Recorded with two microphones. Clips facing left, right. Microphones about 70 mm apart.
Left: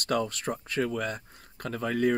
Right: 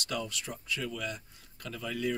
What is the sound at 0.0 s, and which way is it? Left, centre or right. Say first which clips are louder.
Speech: left 8 dB; left.